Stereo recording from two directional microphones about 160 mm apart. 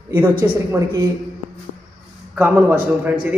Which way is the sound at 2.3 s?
10° right (ahead or behind).